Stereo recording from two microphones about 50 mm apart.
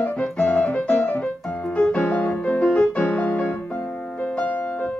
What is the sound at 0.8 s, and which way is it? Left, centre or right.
Music, left.